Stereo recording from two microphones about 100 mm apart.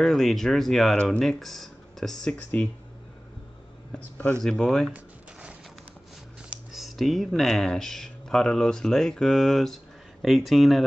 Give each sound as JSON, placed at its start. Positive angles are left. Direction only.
{"t": 0.0, "sound": "speech", "side_deg": 0}
{"t": 2.3, "sound": "speech", "side_deg": 15}
{"t": 4.4, "sound": "speech", "side_deg": 5}
{"t": 4.9, "sound": "a sound", "side_deg": -10}
{"t": 6.7, "sound": "speech", "side_deg": 0}